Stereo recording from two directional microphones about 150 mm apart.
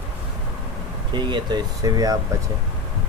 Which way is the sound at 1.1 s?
30° right (ahead or behind).